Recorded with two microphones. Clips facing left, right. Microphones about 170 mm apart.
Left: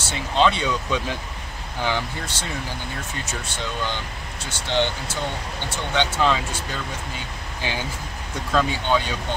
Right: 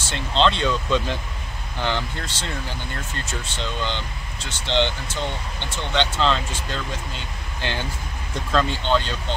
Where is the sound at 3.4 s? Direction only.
10° left (ahead or behind).